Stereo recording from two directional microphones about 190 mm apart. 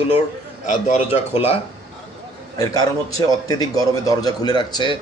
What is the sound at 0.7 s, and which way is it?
Speech, 35° left (ahead or behind).